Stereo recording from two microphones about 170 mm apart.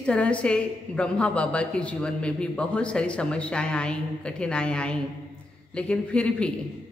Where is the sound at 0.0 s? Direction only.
5° left (ahead or behind).